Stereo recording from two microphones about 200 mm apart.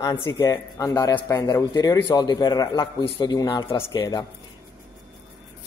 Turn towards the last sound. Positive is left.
turn(degrees=20)  # may be behind; listen again after turning